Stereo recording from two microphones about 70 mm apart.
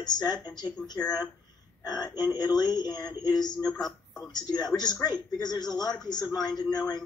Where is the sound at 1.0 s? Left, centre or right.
Centre.